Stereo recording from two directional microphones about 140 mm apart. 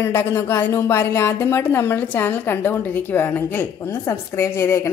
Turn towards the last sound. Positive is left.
turn(degrees=20)  # may be behind; listen again after turning